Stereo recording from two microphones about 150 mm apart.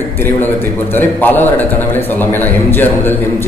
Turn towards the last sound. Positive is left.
turn(degrees=15)  # may be behind; listen again after turning